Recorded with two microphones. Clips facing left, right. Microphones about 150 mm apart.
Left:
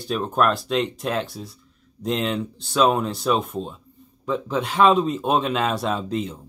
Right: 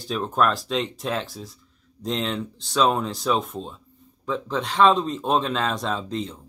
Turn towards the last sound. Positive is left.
turn(degrees=5)  # may be behind; listen again after turning